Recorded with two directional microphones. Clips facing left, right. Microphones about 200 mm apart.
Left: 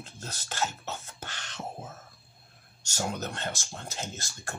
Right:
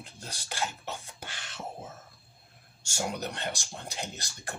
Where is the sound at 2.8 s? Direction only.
10° right (ahead or behind).